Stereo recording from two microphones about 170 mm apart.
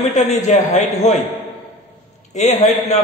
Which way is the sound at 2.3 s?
40° left (ahead or behind).